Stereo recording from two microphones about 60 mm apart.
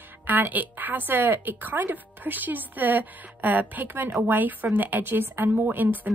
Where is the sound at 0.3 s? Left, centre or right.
Right.